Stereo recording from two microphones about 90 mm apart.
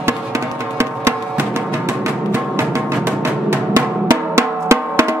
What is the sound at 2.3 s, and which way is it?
Music, 20° right (ahead or behind).